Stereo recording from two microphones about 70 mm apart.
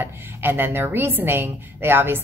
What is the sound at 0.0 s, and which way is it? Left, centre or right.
A woman's voice, right.